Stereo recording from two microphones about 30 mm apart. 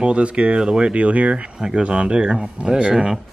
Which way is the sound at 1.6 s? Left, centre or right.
Right.